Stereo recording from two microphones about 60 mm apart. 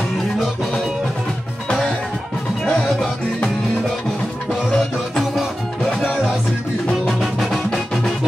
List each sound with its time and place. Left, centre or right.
2.6 s music: left
4.5 s music: centre